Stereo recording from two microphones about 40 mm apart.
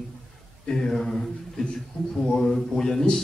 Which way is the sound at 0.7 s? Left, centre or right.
Centre.